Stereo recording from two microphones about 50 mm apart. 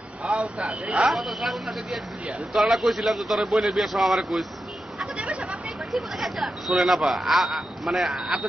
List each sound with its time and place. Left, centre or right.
0.6 s speech: right
1.1 s a man's voice: centre
5.1 s a sound: right
5.9 s a man's voice: centre